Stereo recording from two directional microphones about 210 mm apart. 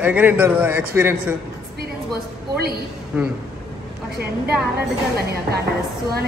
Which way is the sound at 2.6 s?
50° right (ahead or behind).